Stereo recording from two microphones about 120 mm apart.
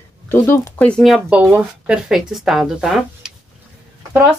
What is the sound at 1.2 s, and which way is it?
Speech, 15° right (ahead or behind).